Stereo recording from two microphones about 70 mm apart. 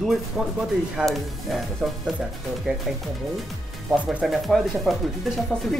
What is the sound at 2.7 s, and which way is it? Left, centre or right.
Speech, centre.